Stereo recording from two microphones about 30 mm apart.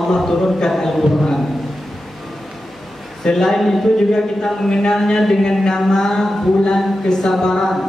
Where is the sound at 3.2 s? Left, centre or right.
Centre.